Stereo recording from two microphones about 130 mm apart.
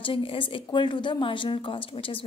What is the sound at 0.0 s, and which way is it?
Speech, 40° left (ahead or behind).